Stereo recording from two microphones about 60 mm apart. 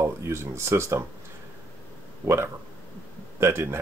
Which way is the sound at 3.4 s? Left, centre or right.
Right.